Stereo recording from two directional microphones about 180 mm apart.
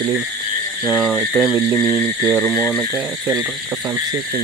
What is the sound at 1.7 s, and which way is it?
Speech, 10° left (ahead or behind).